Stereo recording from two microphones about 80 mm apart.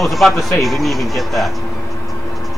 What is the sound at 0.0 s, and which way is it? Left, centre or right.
A man's voice, centre.